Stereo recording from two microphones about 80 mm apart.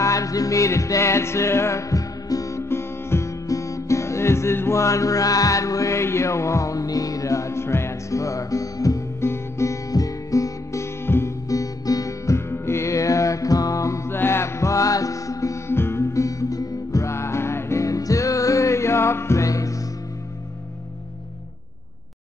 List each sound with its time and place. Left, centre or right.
0.0 s music: left
2.7 s music: left
11.4 s music: left
12.4 s music: left
15.7 s music: left